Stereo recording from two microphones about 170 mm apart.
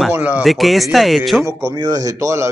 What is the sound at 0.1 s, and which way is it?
Speech, 10° right (ahead or behind).